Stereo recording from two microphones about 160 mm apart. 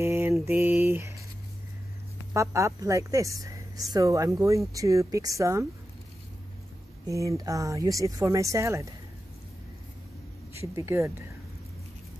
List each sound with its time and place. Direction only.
0.0 s mantra: 15° right (ahead or behind)
2.3 s a woman's voice: 20° right (ahead or behind)
7.1 s a woman's voice: 20° right (ahead or behind)
10.5 s speech: 20° right (ahead or behind)